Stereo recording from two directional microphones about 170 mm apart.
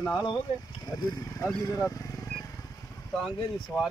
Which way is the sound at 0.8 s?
20° left (ahead or behind).